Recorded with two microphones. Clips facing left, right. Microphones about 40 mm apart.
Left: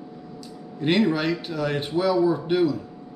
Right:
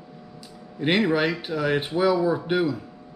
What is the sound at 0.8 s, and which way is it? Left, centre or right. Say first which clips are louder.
Speech: even; centre.